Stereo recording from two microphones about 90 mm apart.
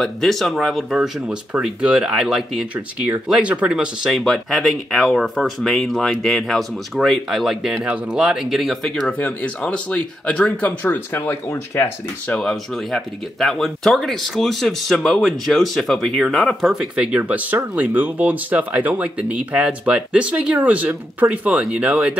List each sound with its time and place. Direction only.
0.0 s speech: 5° left (ahead or behind); by 11.9 s 30° left (ahead or behind)
12.3 s speech: 5° left (ahead or behind)
16.7 s speech: 10° right (ahead or behind)